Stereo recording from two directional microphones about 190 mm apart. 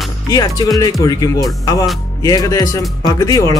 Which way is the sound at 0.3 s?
20° left (ahead or behind).